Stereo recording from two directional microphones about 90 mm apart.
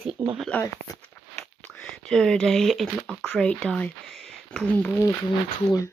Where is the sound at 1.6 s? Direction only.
10° left (ahead or behind).